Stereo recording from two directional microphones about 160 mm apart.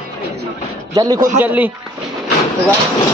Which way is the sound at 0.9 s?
25° right (ahead or behind).